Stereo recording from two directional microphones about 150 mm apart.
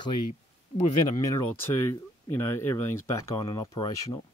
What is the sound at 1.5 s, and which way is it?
Speech, 15° left (ahead or behind).